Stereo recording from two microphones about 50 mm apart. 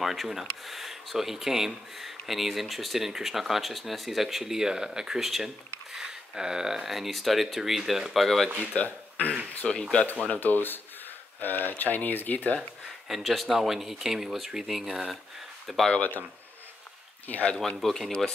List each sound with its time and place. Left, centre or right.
0.0 s speech: centre
8.7 s speech: left
9.7 s speech: centre
10.2 s speech: left
13.1 s speech: centre
15.9 s speech: left
17.3 s speech: left
17.7 s speech: centre